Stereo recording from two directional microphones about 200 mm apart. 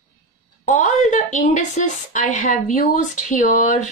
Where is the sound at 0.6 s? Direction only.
35° left (ahead or behind).